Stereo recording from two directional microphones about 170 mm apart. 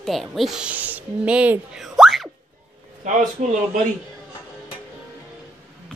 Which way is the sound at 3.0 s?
50° right (ahead or behind).